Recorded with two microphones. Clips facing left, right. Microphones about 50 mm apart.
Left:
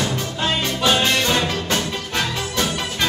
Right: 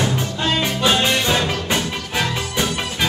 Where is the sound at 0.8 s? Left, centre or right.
Centre.